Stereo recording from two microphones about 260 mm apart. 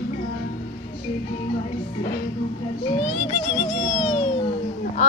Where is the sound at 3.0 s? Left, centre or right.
Left.